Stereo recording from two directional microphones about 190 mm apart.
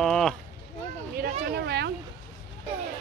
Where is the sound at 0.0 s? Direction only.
5° left (ahead or behind).